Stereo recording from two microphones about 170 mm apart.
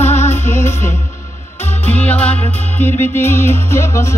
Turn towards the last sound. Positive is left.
turn(degrees=15)  # may be behind; listen again after turning